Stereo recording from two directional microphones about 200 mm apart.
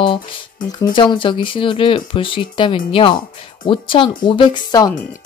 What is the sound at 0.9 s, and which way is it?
Speech, 25° left (ahead or behind).